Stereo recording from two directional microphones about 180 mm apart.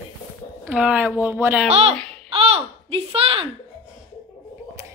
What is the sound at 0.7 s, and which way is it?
Speech, 5° right (ahead or behind).